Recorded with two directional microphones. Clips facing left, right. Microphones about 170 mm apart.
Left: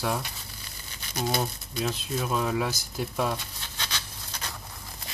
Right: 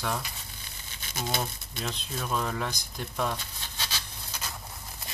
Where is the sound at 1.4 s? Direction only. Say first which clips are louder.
Left 4 dB; 5° left (ahead or behind).